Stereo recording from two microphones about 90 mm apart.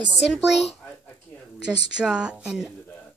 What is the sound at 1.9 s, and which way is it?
Speech, 10° right (ahead or behind).